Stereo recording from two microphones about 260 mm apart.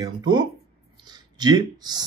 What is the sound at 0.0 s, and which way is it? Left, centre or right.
Speech, centre.